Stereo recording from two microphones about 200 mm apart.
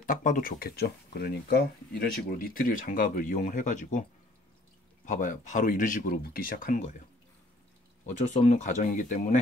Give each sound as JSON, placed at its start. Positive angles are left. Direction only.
{"t": 0.0, "sound": "speech", "side_deg": 40}
{"t": 5.0, "sound": "speech", "side_deg": 40}
{"t": 8.0, "sound": "speech", "side_deg": 35}